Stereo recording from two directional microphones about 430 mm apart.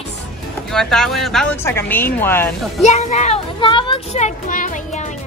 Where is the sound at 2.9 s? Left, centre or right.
Centre.